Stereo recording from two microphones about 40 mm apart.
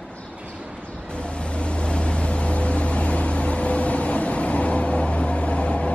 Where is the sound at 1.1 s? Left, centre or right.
Left.